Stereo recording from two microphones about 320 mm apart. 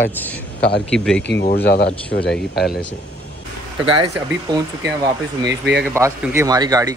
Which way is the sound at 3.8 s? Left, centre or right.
Centre.